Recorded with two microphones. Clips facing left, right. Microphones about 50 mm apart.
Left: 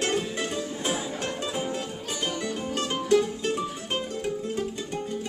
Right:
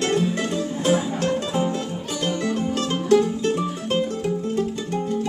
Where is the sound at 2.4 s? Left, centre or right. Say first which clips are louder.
Right 7 dB; right.